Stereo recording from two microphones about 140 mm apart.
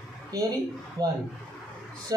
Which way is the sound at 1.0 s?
30° right (ahead or behind).